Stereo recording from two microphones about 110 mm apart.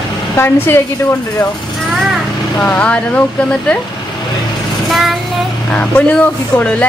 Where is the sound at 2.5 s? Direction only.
10° left (ahead or behind).